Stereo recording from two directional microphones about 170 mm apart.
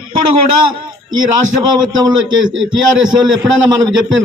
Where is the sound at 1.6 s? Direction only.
25° right (ahead or behind).